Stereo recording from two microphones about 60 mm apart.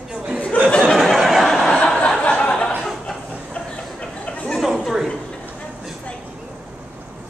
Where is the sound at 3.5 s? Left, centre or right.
Left.